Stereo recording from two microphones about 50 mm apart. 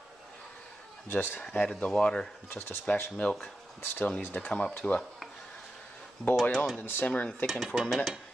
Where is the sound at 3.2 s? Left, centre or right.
Centre.